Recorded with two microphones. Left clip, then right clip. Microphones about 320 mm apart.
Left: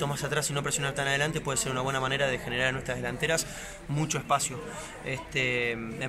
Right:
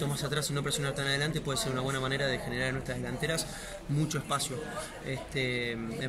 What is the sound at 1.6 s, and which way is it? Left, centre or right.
A man's voice, centre.